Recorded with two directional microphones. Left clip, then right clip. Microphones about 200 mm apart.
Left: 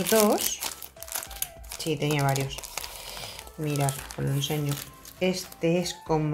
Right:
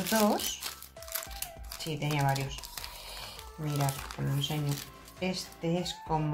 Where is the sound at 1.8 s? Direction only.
40° left (ahead or behind).